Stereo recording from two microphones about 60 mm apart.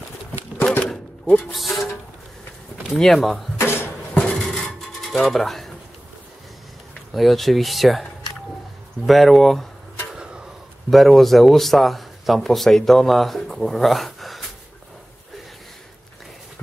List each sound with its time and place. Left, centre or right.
1.3 s speech: centre
1.7 s music: left
3.0 s speech: centre
3.5 s drawer open or close: left
4.1 s dishes: centre
4.5 s a sound: centre
7.2 s speech: centre
9.0 s speech: centre
10.1 s a sound: centre
10.9 s speech: centre